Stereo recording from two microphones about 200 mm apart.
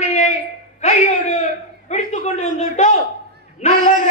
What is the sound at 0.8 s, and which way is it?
A man's voice, 35° left (ahead or behind).